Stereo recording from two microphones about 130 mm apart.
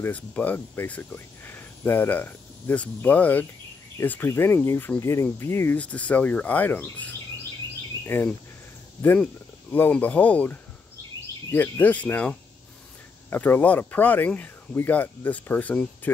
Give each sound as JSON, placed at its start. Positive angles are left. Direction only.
{"t": 0.0, "sound": "speech", "side_deg": 10}